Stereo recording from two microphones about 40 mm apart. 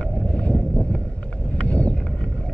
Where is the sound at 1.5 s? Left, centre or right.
Left.